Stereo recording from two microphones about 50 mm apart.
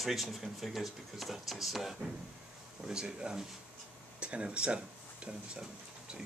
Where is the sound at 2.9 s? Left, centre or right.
Centre.